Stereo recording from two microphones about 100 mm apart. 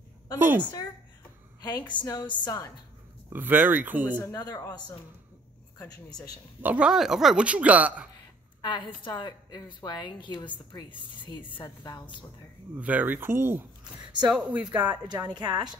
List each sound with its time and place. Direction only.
0.4 s speech: 20° right (ahead or behind)
1.6 s a woman's voice: 45° left (ahead or behind)
3.3 s speech: 20° right (ahead or behind)
4.2 s a woman's voice: 40° left (ahead or behind)
6.6 s speech: 10° right (ahead or behind)
8.1 s a woman's voice: 45° left (ahead or behind)
11.6 s a woman's voice: 40° left (ahead or behind)
12.7 s speech: 15° right (ahead or behind)
15.0 s a woman's voice: 50° right (ahead or behind)